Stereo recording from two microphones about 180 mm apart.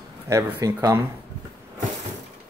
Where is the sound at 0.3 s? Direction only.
15° right (ahead or behind).